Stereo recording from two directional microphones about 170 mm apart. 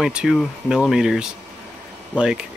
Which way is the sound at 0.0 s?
5° right (ahead or behind).